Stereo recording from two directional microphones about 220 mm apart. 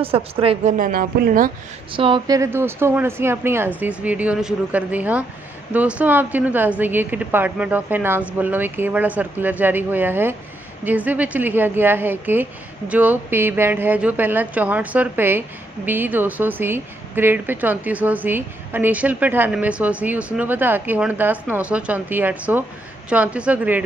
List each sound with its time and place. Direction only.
0.0 s a woman's voice: 25° right (ahead or behind)
0.7 s speech: 40° right (ahead or behind)
1.9 s a woman's voice: 25° right (ahead or behind); by 23.8 s 5° right (ahead or behind)